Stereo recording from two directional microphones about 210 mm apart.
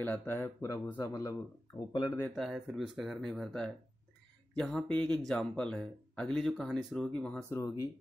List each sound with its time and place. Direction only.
0.0 s speech: 10° left (ahead or behind)
2.1 s speech: 5° left (ahead or behind)
7.5 s speech: 15° left (ahead or behind)